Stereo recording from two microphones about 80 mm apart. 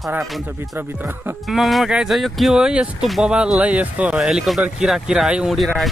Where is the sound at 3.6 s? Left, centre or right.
Centre.